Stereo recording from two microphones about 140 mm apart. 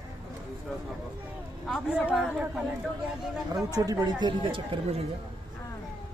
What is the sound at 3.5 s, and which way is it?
Speech, 25° right (ahead or behind).